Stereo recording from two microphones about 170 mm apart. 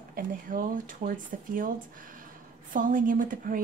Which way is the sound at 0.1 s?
55° right (ahead or behind).